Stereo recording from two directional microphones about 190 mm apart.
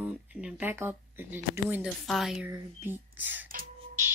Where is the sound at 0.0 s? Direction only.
5° right (ahead or behind).